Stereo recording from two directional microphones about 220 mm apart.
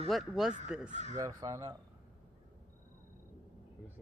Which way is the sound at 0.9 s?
30° right (ahead or behind).